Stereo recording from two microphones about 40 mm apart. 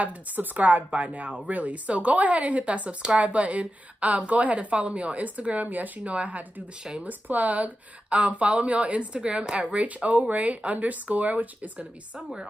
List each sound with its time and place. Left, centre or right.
0.4 s a woman's voice: right